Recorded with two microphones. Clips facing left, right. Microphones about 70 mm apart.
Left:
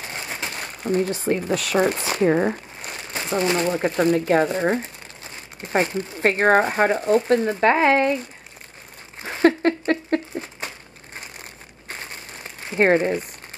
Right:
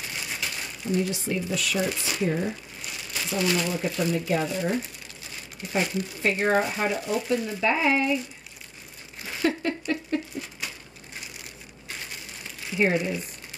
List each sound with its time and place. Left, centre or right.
0.0 s speech: left
6.2 s speech: left
9.2 s a sound: left
9.6 s a sound: left
10.6 s crumpling: left
11.9 s crumpling: left